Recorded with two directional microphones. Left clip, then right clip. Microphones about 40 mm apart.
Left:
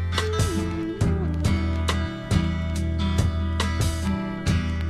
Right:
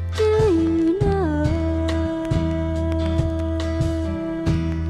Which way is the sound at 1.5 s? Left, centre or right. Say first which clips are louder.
Right 5 dB; left.